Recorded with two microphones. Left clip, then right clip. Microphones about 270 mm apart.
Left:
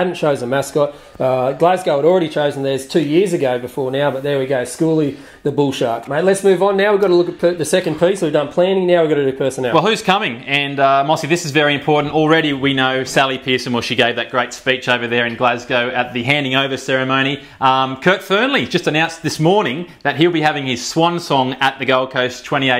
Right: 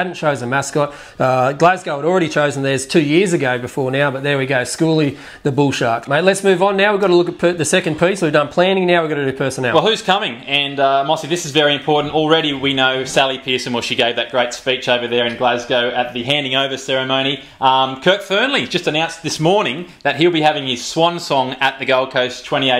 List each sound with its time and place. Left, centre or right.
0.0 s speech: right
1.2 s speech: right
9.8 s speech: left
19.4 s speech: centre